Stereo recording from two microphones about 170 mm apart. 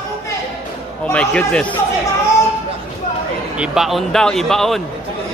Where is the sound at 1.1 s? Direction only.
5° left (ahead or behind).